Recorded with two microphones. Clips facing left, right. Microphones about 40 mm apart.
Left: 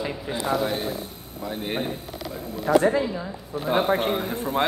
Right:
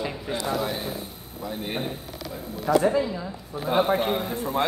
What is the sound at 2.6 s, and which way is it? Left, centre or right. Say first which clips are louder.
Speech: left 2 dB; left.